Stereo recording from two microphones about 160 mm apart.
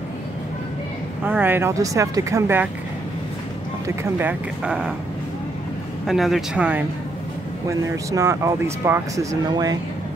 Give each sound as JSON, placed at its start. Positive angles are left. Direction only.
{"t": 1.2, "sound": "speech", "side_deg": -10}
{"t": 3.8, "sound": "speech", "side_deg": -15}
{"t": 6.0, "sound": "speech", "side_deg": 0}
{"t": 7.6, "sound": "speech", "side_deg": -20}